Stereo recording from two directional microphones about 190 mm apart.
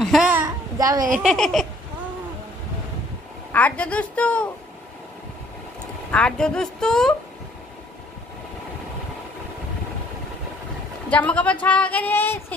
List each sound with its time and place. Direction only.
0.0 s a sound: centre (ahead or behind)
0.5 s babbling: 20° right (ahead or behind)
1.1 s a woman's voice: centre (ahead or behind)
3.5 s a woman's voice: 5° left (ahead or behind)
6.1 s a woman's voice: 5° left (ahead or behind)
11.1 s a woman's voice: 5° left (ahead or behind)